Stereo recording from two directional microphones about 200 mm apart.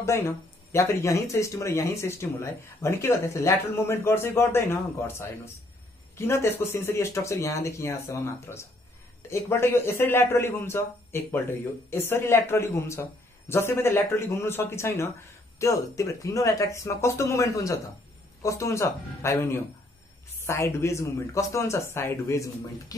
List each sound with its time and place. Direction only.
0.7 s speech: 15° left (ahead or behind)